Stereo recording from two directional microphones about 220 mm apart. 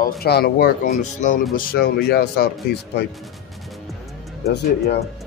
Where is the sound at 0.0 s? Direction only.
45° left (ahead or behind).